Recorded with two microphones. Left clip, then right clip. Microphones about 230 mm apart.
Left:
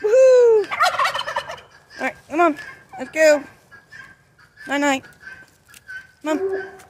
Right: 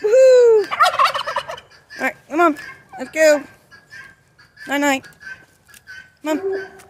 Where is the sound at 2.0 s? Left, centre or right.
Centre.